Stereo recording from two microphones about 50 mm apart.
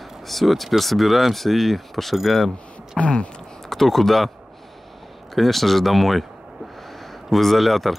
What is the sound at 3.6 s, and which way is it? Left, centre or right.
Speech, centre.